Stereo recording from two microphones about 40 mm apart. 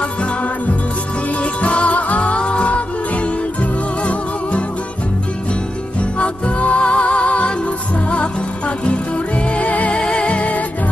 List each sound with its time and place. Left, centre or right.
1.4 s music: left
4.0 s music: left
6.1 s music: left
9.9 s music: left